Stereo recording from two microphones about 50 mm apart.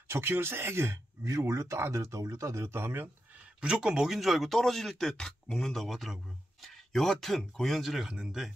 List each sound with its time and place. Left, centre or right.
0.1 s speech: right
2.7 s speech: right
3.6 s speech: centre
4.2 s speech: centre
8.1 s speech: centre